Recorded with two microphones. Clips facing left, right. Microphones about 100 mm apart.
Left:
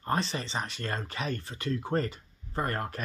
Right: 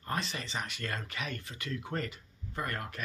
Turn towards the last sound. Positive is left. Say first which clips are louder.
# left 5 dB
turn(degrees=40)  # may be behind; listen again after turning